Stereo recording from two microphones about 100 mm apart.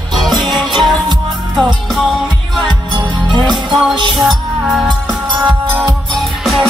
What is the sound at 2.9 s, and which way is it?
Music, 50° right (ahead or behind).